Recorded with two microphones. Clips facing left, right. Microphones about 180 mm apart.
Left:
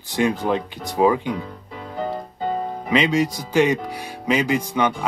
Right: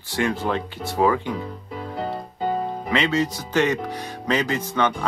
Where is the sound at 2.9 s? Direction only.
15° left (ahead or behind).